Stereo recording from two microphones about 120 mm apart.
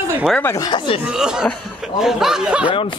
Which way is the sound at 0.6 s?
40° left (ahead or behind).